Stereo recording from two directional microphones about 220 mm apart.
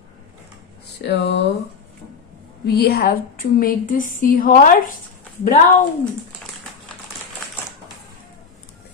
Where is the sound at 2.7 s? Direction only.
45° left (ahead or behind).